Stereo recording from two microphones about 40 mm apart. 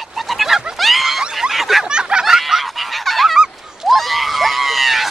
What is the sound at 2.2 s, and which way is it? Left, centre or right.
Fowl, centre.